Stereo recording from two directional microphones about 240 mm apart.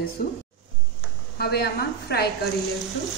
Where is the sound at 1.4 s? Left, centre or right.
Left.